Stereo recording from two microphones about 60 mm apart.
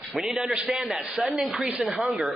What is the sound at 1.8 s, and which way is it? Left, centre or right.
Speech, centre.